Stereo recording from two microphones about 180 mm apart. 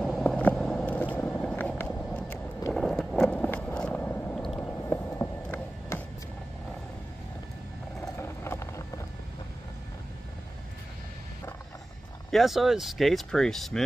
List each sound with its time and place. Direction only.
0.0 s vehicle: 5° left (ahead or behind)
4.6 s music: 10° left (ahead or behind)
8.2 s a sound: 15° left (ahead or behind)
12.3 s speech: centre (ahead or behind)